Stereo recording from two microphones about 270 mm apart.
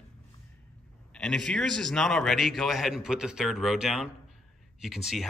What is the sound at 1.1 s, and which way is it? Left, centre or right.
A man's voice, centre.